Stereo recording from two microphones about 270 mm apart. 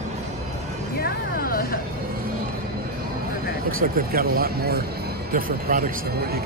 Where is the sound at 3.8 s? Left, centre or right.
Right.